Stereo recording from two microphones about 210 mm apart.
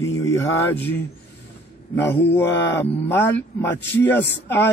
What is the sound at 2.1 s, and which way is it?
A man's voice, 10° left (ahead or behind).